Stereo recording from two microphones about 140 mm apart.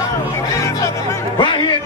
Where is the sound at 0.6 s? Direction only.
20° left (ahead or behind).